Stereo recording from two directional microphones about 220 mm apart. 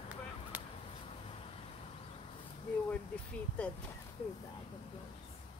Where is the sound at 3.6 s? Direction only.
5° left (ahead or behind).